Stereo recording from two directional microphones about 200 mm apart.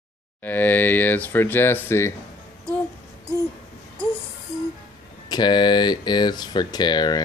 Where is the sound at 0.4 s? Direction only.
10° left (ahead or behind).